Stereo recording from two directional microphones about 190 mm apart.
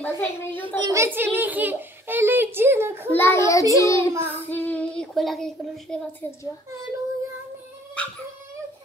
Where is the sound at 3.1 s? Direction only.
10° left (ahead or behind).